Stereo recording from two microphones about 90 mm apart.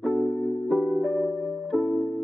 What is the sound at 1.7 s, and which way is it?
Music, 5° right (ahead or behind).